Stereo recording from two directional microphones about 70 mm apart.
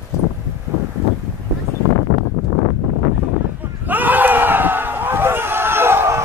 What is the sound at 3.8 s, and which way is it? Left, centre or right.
Crowd, right.